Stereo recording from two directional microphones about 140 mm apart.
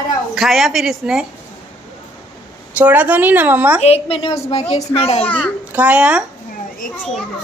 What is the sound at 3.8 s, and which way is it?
A woman's voice, 45° left (ahead or behind).